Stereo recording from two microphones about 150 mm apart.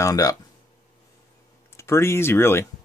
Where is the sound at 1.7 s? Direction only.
20° left (ahead or behind).